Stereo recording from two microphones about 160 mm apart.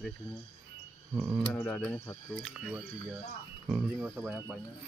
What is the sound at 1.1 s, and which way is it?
Speech, 15° right (ahead or behind).